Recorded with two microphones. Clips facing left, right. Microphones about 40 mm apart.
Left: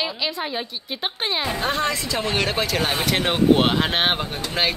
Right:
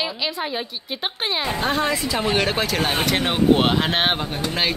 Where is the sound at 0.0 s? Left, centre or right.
Centre.